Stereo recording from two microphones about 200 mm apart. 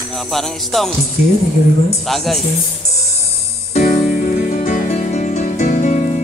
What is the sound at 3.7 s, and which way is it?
Music, 40° left (ahead or behind).